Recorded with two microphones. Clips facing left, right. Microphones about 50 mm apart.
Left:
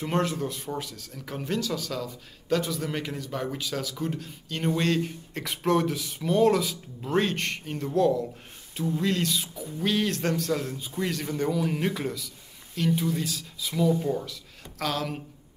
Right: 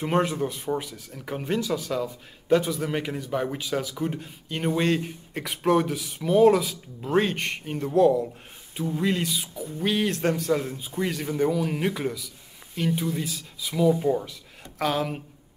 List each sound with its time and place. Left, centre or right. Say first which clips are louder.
0.0 s a man's voice: right 3 dB; centre